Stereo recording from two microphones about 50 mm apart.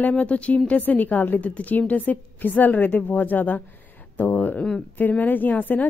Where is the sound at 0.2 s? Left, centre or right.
Left.